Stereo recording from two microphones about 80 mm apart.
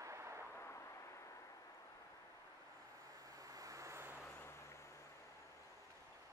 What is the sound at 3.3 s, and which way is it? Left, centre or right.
Vehicle, right.